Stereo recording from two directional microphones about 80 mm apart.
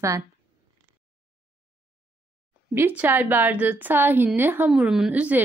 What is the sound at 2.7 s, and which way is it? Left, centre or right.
A woman's voice, right.